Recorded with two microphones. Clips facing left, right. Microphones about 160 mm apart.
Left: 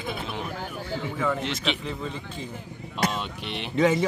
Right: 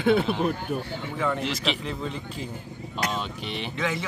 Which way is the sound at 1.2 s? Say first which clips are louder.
Right 2 dB; centre (ahead or behind).